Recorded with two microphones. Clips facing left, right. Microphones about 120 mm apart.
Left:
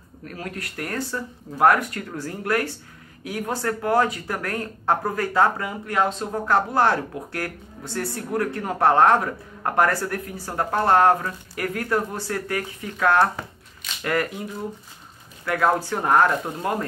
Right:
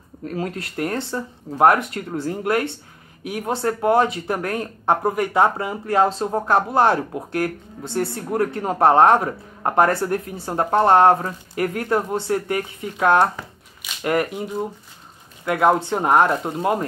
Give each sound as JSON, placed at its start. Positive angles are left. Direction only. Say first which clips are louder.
{"t": 0.2, "sound": "speech", "louder": "right 7 dB", "side_deg": -25}